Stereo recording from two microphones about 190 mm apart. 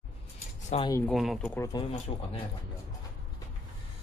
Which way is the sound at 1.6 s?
20° left (ahead or behind).